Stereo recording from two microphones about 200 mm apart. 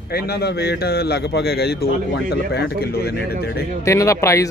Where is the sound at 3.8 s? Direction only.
15° left (ahead or behind).